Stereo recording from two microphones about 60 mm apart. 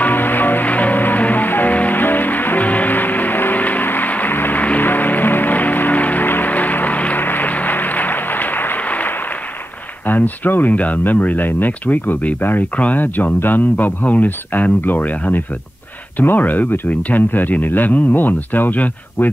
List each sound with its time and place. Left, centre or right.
0.0 s music: left
10.0 s speech: left